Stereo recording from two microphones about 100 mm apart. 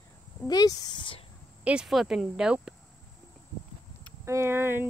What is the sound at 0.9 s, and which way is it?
Speech, 55° left (ahead or behind).